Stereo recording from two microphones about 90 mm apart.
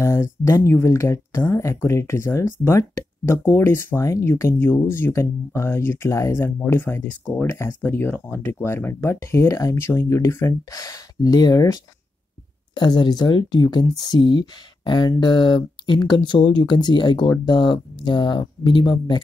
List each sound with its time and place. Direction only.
0.0 s speech: 30° left (ahead or behind)
12.7 s speech: 55° left (ahead or behind)